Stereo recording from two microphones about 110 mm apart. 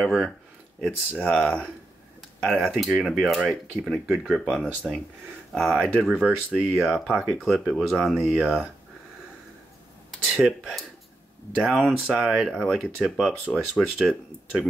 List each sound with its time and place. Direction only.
0.0 s speech: 5° right (ahead or behind)
1.4 s speech: 10° left (ahead or behind)
10.3 s speech: 5° right (ahead or behind)